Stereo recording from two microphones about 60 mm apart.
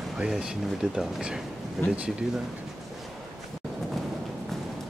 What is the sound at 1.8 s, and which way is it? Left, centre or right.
Speech, left.